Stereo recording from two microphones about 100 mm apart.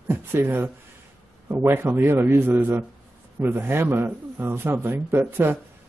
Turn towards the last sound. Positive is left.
turn(degrees=-20)  # may be behind; listen again after turning